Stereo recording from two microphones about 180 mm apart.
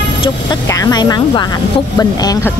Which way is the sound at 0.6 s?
20° left (ahead or behind).